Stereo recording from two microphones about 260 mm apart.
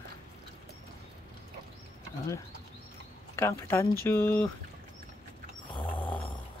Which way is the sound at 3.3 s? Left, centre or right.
Centre.